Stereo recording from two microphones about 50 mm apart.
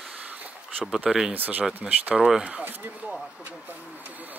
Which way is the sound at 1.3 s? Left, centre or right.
Right.